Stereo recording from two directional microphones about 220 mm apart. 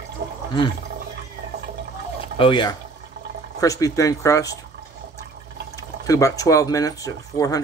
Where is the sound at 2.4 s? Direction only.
20° left (ahead or behind).